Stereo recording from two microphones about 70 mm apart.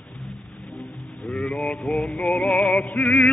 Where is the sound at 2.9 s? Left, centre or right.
Left.